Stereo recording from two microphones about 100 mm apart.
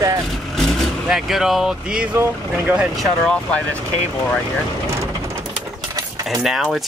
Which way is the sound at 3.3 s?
10° left (ahead or behind).